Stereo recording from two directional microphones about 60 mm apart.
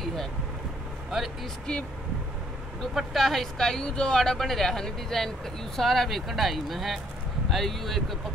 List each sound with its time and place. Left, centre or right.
0.0 s vehicle: centre
1.7 s speech: centre
2.8 s speech: centre